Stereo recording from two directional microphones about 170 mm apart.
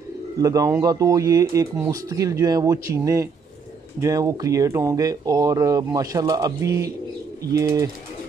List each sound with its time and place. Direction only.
0.4 s speech: 20° right (ahead or behind)